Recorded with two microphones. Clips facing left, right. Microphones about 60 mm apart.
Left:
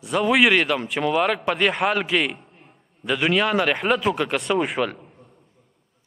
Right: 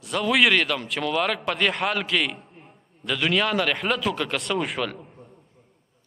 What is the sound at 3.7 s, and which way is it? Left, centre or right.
A man's voice, centre.